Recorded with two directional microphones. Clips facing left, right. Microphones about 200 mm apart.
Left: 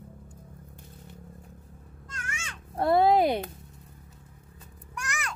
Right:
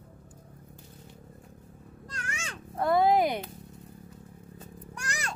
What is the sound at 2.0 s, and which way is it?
Babbling, 35° right (ahead or behind).